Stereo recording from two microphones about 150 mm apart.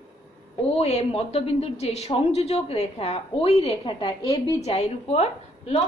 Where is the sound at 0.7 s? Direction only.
45° left (ahead or behind).